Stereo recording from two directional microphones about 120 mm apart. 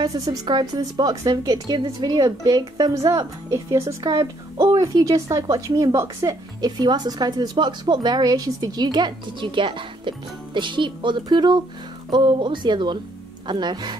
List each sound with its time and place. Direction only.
0.0 s speech: 30° right (ahead or behind)